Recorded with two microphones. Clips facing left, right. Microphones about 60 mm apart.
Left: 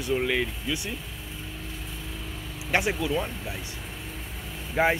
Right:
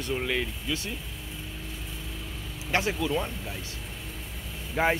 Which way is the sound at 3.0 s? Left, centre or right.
Centre.